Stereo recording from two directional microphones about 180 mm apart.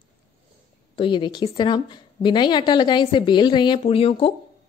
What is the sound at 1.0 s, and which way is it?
A woman's voice, 25° left (ahead or behind).